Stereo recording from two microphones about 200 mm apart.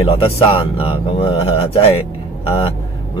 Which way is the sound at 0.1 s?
30° left (ahead or behind).